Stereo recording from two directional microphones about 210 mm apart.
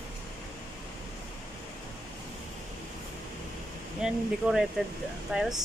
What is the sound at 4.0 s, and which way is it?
Speech, 5° right (ahead or behind).